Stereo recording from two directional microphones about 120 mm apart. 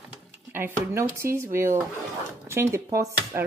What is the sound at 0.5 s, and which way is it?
Speech, 20° right (ahead or behind).